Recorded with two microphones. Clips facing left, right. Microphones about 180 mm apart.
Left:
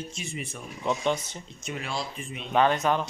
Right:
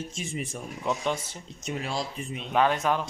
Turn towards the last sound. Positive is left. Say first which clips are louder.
# left 1 dB
turn(degrees=-5)  # may be behind; listen again after turning